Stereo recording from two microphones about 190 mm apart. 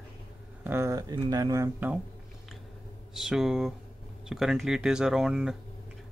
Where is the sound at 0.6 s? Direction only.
15° right (ahead or behind).